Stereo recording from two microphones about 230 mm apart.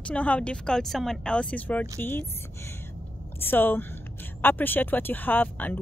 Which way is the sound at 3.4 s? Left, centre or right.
Centre.